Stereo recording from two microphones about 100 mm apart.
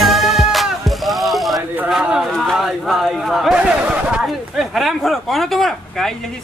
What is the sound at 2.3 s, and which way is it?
Speech, centre (ahead or behind).